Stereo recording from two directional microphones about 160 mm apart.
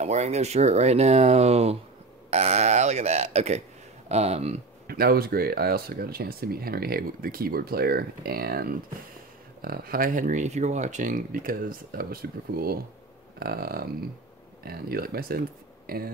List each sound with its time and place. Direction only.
0.0 s speech: 45° right (ahead or behind)
4.8 s speech: 70° right (ahead or behind)